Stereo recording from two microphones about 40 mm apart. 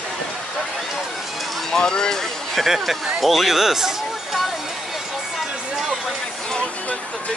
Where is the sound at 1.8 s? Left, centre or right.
Centre.